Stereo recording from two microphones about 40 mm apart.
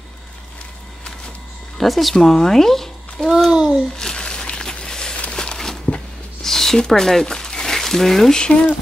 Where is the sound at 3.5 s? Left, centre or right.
Centre.